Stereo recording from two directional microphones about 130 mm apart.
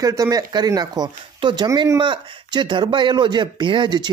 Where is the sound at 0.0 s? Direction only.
25° right (ahead or behind).